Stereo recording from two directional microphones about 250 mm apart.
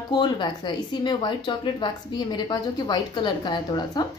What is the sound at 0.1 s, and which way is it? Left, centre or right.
A woman's voice, centre.